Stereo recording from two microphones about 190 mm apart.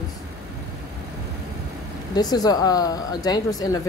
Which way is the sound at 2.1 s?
20° left (ahead or behind).